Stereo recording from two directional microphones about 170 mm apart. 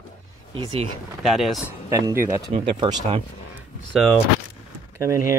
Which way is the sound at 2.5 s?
30° right (ahead or behind).